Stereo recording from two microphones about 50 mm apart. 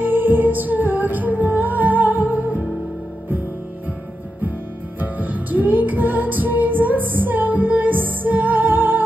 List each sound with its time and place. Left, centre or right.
0.0 s music: right
5.0 s music: right